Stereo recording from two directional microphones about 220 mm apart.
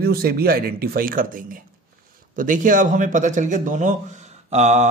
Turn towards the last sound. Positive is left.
turn(degrees=-30)  # may be behind; listen again after turning